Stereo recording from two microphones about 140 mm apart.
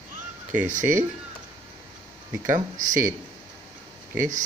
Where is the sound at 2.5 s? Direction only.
70° right (ahead or behind).